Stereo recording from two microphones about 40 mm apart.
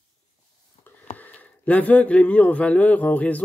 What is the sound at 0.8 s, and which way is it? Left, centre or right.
Speech, left.